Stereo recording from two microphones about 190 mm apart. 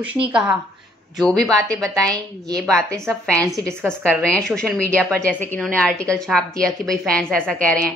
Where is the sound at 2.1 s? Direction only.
20° right (ahead or behind).